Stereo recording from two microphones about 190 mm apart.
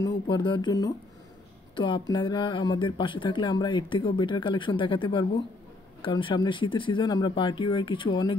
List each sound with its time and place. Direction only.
0.3 s speech: 25° left (ahead or behind)